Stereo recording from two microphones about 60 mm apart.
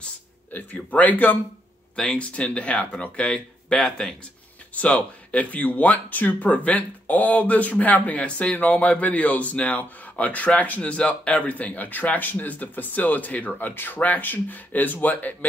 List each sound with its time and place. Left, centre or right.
0.0 s speech: left
2.0 s speech: centre
4.7 s speech: left